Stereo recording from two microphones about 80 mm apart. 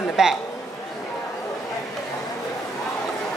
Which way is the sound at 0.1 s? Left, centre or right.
Centre.